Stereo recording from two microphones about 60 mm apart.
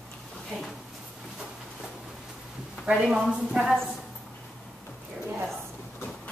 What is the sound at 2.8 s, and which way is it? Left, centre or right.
Speech, centre.